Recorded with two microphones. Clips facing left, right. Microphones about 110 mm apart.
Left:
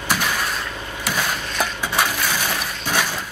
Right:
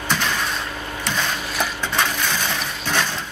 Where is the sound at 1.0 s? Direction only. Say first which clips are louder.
Left 1 dB; 10° left (ahead or behind).